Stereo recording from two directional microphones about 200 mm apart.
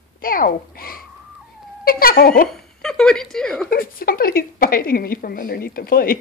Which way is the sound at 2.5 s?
5° left (ahead or behind).